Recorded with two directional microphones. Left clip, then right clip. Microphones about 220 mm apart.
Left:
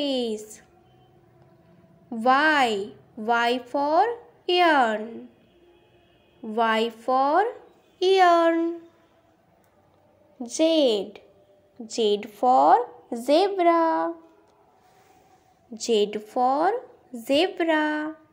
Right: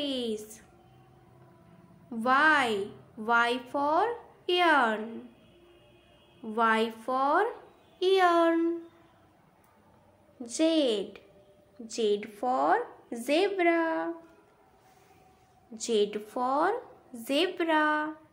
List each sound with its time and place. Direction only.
0.0 s a woman's voice: 20° left (ahead or behind)
2.0 s a woman's voice: 20° left (ahead or behind)
6.5 s a woman's voice: 20° left (ahead or behind)
10.4 s a woman's voice: 20° left (ahead or behind)
15.7 s a woman's voice: 20° left (ahead or behind)